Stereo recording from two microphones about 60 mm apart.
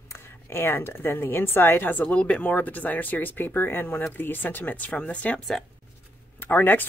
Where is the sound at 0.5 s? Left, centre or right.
Left.